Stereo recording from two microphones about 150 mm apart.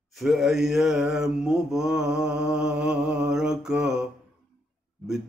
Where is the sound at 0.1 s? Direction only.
Centre (ahead or behind).